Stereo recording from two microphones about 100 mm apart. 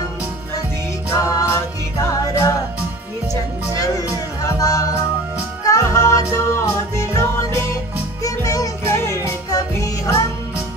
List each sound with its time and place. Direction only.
1.1 s music: 35° left (ahead or behind)
4.6 s music: 35° left (ahead or behind)